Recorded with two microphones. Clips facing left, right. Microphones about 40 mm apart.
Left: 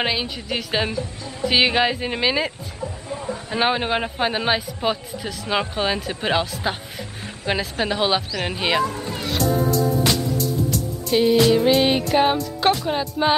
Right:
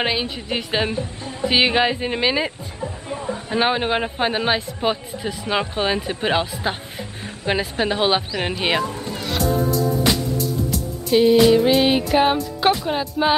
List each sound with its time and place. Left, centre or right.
0.0 s a man's voice: centre
2.8 s speech: right
3.4 s a man's voice: centre
10.1 s music: centre